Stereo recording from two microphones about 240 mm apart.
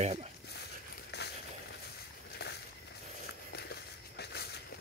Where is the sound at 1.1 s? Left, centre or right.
Left.